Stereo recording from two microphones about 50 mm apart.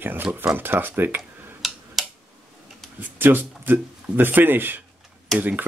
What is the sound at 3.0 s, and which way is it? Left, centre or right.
Speech, right.